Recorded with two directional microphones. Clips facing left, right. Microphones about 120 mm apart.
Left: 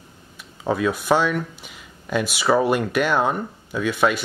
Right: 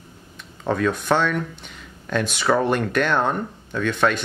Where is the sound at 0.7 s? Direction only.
10° left (ahead or behind).